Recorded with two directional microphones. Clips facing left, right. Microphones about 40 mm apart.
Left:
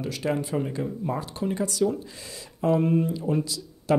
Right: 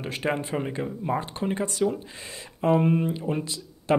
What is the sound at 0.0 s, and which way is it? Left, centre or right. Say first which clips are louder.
Speech: even; right.